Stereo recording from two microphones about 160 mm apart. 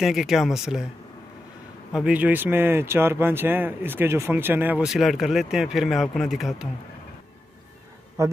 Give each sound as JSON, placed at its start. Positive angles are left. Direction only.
{"t": 0.0, "sound": "speech", "side_deg": 0}
{"t": 1.9, "sound": "speech", "side_deg": -5}
{"t": 8.2, "sound": "a man's voice", "side_deg": -20}